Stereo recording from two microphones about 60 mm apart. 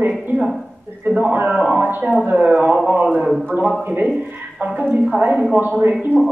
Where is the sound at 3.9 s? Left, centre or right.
Right.